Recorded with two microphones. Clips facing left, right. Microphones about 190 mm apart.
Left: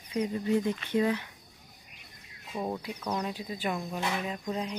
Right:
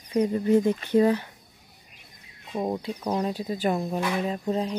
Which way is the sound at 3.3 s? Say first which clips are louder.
Right 7 dB; 40° right (ahead or behind).